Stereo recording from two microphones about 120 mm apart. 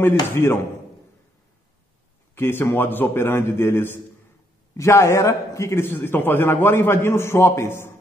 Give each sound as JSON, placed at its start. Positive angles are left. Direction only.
{"t": 0.3, "sound": "a man's voice", "side_deg": 20}
{"t": 2.3, "sound": "a man's voice", "side_deg": 20}